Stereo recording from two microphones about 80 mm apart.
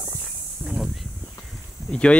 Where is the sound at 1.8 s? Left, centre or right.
Centre.